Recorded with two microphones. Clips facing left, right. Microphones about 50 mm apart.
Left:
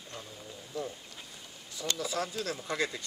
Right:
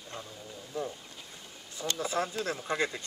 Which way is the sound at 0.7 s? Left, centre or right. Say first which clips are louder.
Right 2 dB; right.